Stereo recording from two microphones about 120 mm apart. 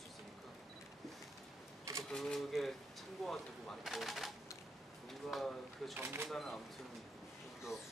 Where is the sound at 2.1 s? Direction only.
5° left (ahead or behind).